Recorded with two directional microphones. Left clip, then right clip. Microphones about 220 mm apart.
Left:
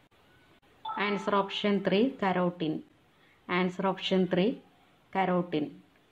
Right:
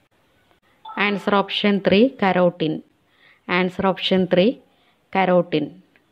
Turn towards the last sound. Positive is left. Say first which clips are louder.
# right 11 dB
turn(degrees=-35)  # may be behind; listen again after turning